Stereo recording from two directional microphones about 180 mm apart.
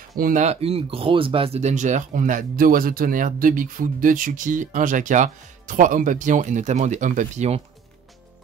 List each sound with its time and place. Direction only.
0.2 s speech: 45° right (ahead or behind)